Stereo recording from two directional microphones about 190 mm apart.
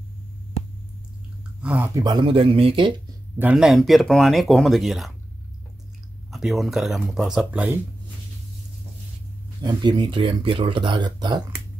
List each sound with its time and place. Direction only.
1.6 s speech: 10° right (ahead or behind)
2.0 s speech: 20° right (ahead or behind)
3.3 s speech: 5° right (ahead or behind)
6.3 s speech: centre (ahead or behind)
9.6 s speech: 20° right (ahead or behind)